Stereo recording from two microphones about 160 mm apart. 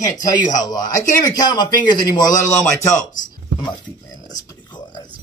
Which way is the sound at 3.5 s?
25° left (ahead or behind).